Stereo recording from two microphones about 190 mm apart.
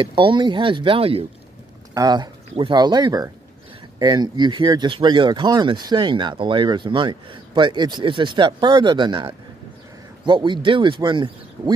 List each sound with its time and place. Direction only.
0.0 s speech: 25° right (ahead or behind)